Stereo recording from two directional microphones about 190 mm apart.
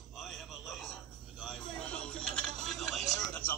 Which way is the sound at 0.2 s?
Centre (ahead or behind).